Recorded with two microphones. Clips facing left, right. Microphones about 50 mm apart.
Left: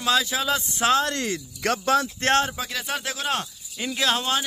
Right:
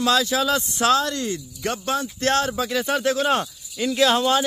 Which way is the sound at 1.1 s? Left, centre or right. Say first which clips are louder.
Right 1 dB; left.